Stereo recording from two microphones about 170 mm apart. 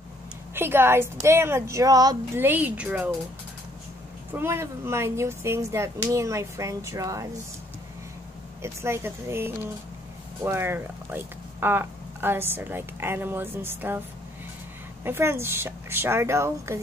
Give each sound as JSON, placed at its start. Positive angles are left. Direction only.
{"t": 0.6, "sound": "speech", "side_deg": -15}
{"t": 4.3, "sound": "speech", "side_deg": -15}
{"t": 8.8, "sound": "speech", "side_deg": -15}
{"t": 15.0, "sound": "speech", "side_deg": -15}